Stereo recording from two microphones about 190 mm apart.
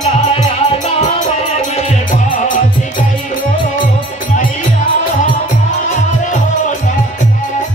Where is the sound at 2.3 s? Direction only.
45° left (ahead or behind).